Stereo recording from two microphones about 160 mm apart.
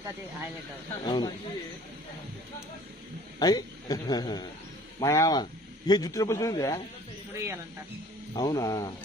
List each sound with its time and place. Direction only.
1.0 s a man's voice: 25° left (ahead or behind)
3.3 s a man's voice: 25° left (ahead or behind)
7.3 s speech: 15° right (ahead or behind)
8.4 s a man's voice: 25° left (ahead or behind)